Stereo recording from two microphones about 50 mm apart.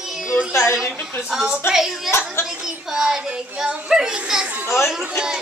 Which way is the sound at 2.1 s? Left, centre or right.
Left.